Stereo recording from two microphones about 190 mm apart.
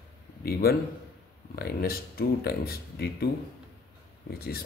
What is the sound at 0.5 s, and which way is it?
Speech, 55° left (ahead or behind).